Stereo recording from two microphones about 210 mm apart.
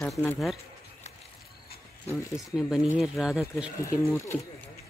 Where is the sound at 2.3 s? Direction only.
5° right (ahead or behind).